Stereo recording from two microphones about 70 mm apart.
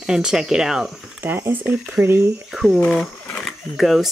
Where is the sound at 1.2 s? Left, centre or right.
Right.